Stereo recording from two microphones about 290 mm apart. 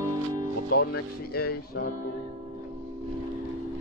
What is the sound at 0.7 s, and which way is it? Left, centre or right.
Music, left.